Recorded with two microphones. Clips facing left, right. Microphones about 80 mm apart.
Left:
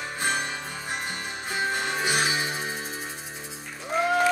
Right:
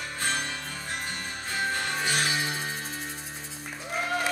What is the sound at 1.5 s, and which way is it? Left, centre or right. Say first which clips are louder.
Music: left 2 dB; centre.